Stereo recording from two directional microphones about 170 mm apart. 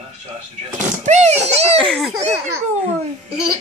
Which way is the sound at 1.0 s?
40° right (ahead or behind).